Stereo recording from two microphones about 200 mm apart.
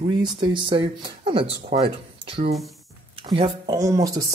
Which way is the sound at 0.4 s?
25° right (ahead or behind).